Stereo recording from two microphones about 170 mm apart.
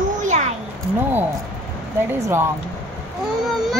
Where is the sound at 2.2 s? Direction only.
15° right (ahead or behind).